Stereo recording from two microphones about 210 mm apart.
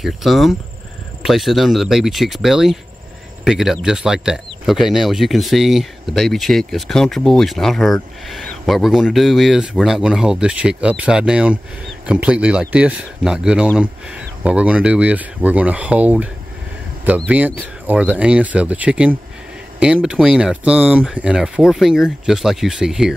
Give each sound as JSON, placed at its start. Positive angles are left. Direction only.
{"t": 0.0, "sound": "speech", "side_deg": 0}
{"t": 17.3, "sound": "speech", "side_deg": -5}